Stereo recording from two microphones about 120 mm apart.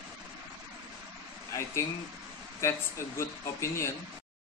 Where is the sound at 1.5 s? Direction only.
25° left (ahead or behind).